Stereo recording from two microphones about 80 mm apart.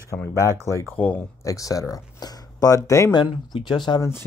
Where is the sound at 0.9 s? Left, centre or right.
Left.